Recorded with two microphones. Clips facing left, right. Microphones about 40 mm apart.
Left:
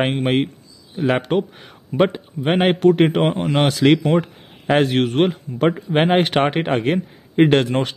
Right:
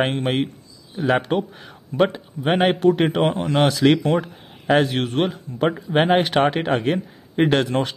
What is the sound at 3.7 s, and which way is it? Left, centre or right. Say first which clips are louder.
Speech: left 2 dB; left.